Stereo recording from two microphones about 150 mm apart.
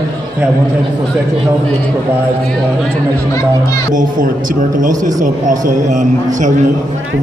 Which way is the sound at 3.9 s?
60° right (ahead or behind).